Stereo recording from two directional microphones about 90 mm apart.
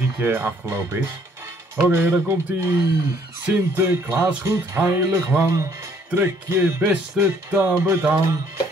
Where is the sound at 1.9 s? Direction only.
30° right (ahead or behind).